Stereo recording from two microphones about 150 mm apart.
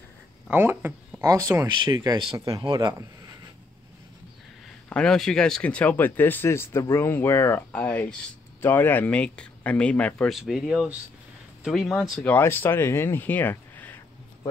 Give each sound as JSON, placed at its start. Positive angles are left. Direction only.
{"t": 0.5, "sound": "speech", "side_deg": -15}
{"t": 4.8, "sound": "speech", "side_deg": 5}
{"t": 12.2, "sound": "speech", "side_deg": 15}